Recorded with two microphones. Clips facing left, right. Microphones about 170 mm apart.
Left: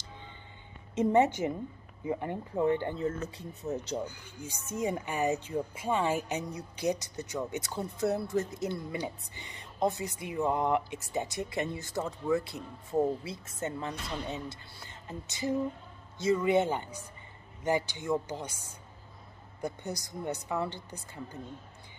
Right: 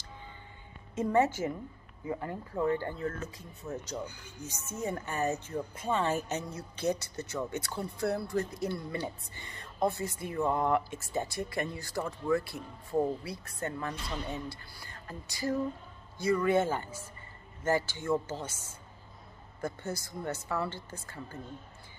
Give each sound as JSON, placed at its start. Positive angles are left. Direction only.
{"t": 0.9, "sound": "speech", "side_deg": 20}